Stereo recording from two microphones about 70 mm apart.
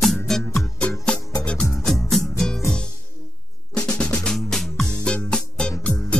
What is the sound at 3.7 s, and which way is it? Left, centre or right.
Drum, centre.